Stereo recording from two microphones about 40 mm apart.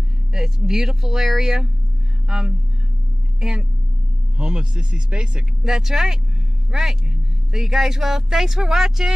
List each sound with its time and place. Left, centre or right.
0.3 s speech: centre
5.6 s speech: centre